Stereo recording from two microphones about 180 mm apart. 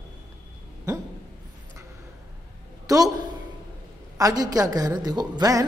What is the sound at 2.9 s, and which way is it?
Speech, 20° right (ahead or behind).